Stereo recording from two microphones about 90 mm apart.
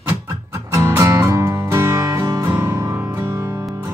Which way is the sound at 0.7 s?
30° right (ahead or behind).